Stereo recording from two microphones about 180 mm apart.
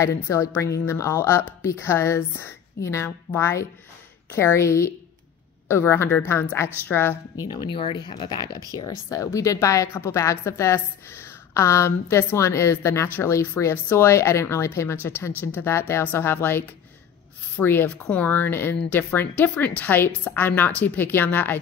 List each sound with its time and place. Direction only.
0.0 s a woman's voice: 15° left (ahead or behind)
7.4 s a woman's voice: 25° left (ahead or behind)